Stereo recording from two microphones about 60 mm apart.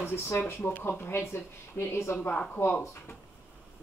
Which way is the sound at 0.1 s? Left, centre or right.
Left.